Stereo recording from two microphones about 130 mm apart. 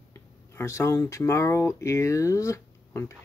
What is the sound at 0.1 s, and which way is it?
Speech, 20° left (ahead or behind).